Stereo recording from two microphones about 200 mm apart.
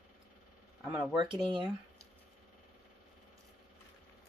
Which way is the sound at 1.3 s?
25° right (ahead or behind).